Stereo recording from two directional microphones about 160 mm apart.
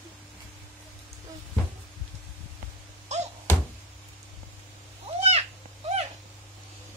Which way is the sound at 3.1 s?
45° right (ahead or behind).